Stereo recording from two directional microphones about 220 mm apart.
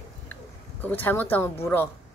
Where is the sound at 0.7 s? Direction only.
10° left (ahead or behind).